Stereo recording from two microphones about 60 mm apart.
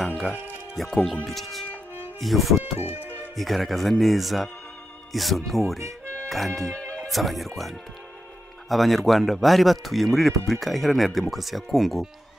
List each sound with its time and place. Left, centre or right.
0.8 s speech: centre
2.6 s speech: right
3.3 s speech: centre
5.8 s music: right
6.2 s speech: centre
6.7 s music: centre
7.1 s speech: centre